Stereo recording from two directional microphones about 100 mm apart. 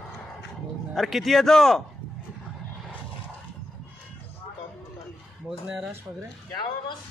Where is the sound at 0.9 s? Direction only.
Centre (ahead or behind).